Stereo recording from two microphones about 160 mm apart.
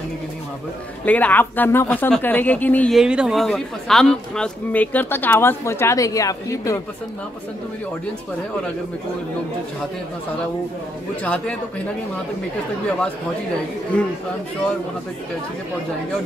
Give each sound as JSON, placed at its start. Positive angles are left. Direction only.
{"t": 1.0, "sound": "a man's voice", "side_deg": 10}
{"t": 2.9, "sound": "a man's voice", "side_deg": -5}
{"t": 11.2, "sound": "a man's voice", "side_deg": 5}